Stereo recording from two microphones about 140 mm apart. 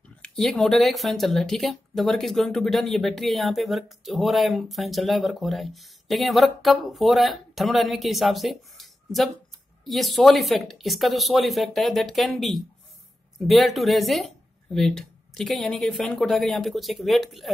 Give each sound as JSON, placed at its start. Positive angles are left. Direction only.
{"t": 0.2, "sound": "speech", "side_deg": 5}